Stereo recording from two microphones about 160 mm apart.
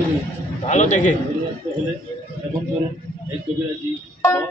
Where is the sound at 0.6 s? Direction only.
50° left (ahead or behind).